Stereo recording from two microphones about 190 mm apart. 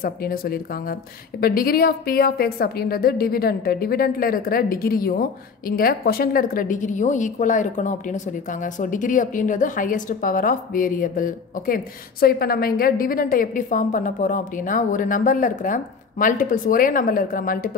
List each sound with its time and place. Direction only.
0.0 s a woman's voice: 50° left (ahead or behind)